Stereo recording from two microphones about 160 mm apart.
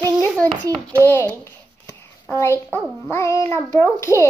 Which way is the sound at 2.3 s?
15° left (ahead or behind).